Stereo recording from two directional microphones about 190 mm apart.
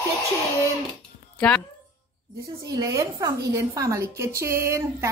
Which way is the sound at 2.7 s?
20° right (ahead or behind).